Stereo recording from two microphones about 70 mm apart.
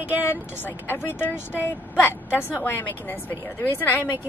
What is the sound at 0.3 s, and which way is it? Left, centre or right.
Speech, left.